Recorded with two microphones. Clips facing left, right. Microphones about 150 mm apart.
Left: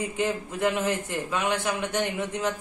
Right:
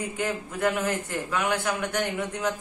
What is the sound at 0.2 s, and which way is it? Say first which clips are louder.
A man's voice: left 1 dB; 25° left (ahead or behind).